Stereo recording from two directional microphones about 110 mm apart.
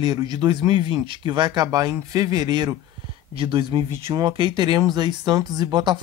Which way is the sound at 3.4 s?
50° right (ahead or behind).